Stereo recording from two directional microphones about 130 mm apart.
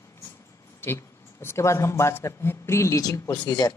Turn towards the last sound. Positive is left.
turn(degrees=30)  # may be behind; listen again after turning